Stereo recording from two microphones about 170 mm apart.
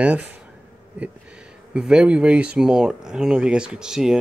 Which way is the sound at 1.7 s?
5° right (ahead or behind).